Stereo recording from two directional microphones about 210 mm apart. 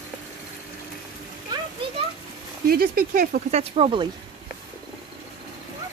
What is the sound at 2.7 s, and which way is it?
Speech, 45° right (ahead or behind).